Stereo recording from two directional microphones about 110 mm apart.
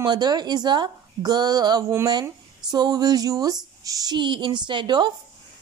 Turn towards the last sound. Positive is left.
turn(degrees=-45)  # may be behind; listen again after turning